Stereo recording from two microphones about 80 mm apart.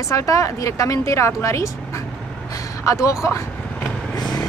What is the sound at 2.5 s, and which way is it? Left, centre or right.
Vehicle, left.